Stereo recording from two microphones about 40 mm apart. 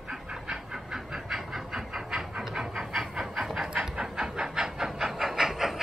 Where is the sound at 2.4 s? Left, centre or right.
Centre.